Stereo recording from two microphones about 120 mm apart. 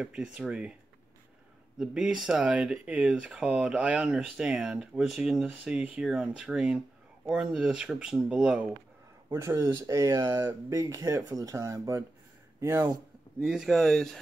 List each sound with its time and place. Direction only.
0.0 s speech: 10° right (ahead or behind)
1.8 s speech: 5° right (ahead or behind)
9.3 s speech: 25° right (ahead or behind)
13.4 s speech: centre (ahead or behind)